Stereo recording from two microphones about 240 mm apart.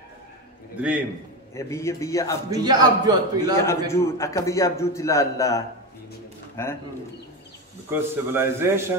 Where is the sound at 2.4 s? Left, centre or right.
Centre.